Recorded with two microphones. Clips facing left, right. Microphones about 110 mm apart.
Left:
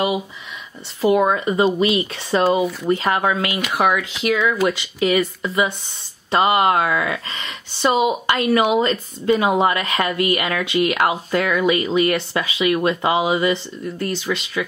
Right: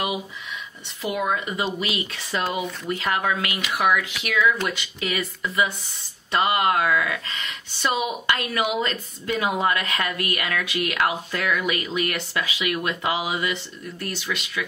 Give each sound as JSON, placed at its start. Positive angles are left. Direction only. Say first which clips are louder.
{"t": 1.0, "sound": "speech", "louder": "left 9 dB", "side_deg": 35}